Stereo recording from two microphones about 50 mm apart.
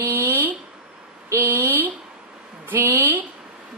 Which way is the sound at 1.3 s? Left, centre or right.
Right.